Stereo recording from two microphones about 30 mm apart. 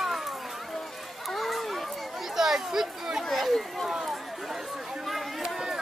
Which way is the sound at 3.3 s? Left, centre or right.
Centre.